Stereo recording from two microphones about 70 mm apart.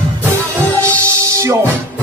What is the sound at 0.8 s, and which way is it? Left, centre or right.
Music, right.